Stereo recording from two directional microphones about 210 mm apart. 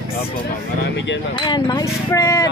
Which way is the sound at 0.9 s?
60° left (ahead or behind).